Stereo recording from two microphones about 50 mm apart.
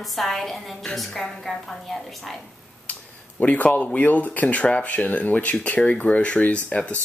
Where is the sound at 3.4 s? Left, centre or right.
Left.